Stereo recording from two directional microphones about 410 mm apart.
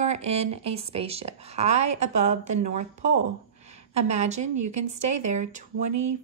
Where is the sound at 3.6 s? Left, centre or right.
Centre.